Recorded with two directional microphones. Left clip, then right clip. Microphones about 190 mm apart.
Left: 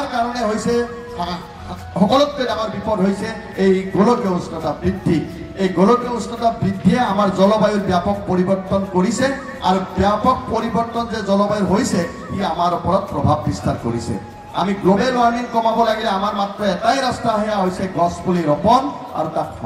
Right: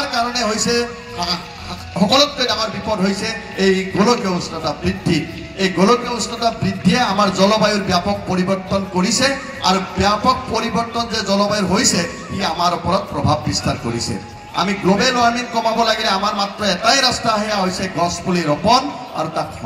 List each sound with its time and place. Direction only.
0.1 s a man's voice: 55° left (ahead or behind)